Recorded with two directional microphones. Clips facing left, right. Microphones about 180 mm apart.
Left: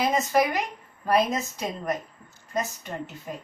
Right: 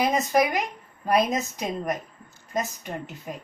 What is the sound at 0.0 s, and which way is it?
Speech, 15° right (ahead or behind).